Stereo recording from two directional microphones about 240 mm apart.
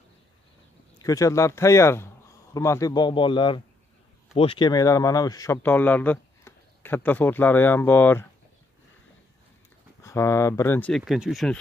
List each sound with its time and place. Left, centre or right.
1.0 s a man's voice: centre
10.0 s speech: centre